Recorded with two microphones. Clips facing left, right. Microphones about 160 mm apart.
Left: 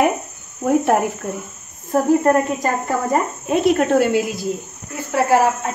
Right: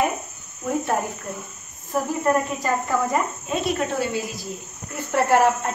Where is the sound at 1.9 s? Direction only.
50° left (ahead or behind).